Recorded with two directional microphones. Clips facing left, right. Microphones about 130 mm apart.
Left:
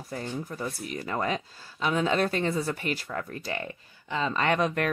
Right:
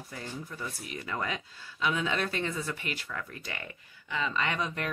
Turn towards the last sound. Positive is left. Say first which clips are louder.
# left 7 dB
turn(degrees=60)  # may be behind; listen again after turning